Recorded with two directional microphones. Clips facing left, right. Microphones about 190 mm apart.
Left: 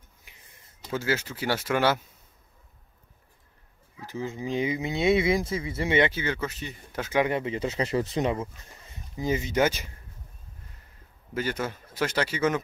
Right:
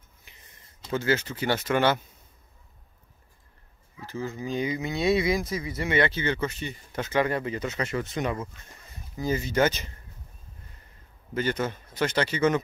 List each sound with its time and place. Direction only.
0.3 s a sound: 10° left (ahead or behind)
0.9 s a man's voice: 5° left (ahead or behind)
4.0 s speech: 15° left (ahead or behind)
6.1 s speech: 5° left (ahead or behind)
11.3 s a man's voice: 5° left (ahead or behind)